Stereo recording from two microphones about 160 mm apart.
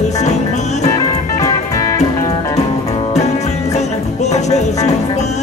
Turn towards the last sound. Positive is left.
turn(degrees=45)  # may be behind; listen again after turning